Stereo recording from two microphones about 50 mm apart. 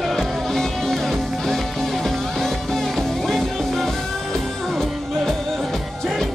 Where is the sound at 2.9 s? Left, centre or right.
Centre.